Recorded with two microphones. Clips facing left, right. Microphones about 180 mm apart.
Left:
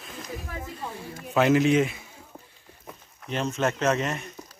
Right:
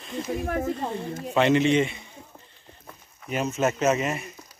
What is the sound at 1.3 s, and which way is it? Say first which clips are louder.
Speech: even; centre (ahead or behind).